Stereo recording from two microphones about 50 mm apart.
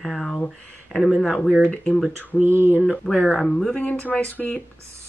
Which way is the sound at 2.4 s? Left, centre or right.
Right.